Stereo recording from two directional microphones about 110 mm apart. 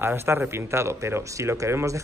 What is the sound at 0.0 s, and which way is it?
Speech, 20° right (ahead or behind).